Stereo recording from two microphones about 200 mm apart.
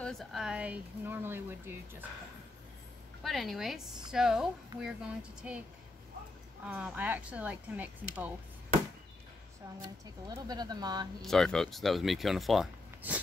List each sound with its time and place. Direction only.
0.0 s speech: centre (ahead or behind)
3.3 s speech: centre (ahead or behind)
6.7 s speech: 5° right (ahead or behind)
10.3 s speech: 20° right (ahead or behind)
11.2 s speech: centre (ahead or behind)